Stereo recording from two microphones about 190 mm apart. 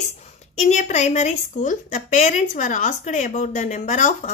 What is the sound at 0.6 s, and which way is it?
A woman's voice, 35° left (ahead or behind).